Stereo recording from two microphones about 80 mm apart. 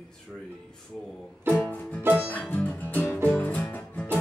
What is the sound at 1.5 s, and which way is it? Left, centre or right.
Music, centre.